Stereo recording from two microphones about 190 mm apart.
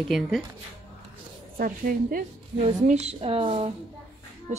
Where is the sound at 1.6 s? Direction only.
50° right (ahead or behind).